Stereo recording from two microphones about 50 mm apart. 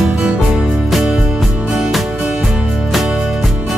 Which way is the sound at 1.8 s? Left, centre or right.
Centre.